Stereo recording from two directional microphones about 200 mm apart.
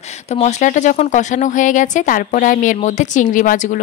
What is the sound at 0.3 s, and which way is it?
Speech, 35° left (ahead or behind).